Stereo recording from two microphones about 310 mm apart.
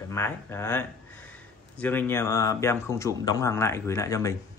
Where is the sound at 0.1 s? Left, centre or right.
Centre.